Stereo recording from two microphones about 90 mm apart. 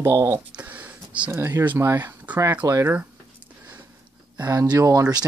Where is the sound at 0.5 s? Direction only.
15° right (ahead or behind).